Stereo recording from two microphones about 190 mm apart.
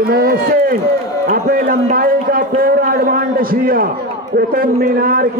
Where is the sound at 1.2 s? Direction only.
50° right (ahead or behind).